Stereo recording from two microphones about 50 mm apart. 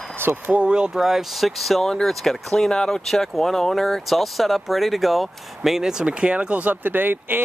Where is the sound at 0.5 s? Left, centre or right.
Right.